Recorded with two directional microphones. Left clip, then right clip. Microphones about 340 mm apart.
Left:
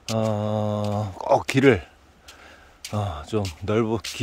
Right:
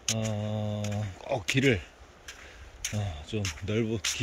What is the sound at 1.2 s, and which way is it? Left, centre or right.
Speech, centre.